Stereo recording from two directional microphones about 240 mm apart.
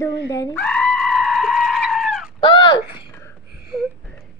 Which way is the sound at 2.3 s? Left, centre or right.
Centre.